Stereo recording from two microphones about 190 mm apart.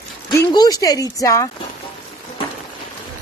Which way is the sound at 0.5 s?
20° left (ahead or behind).